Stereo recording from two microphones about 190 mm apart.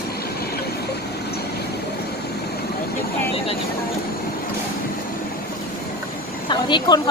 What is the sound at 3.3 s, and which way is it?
Vehicle, 30° left (ahead or behind).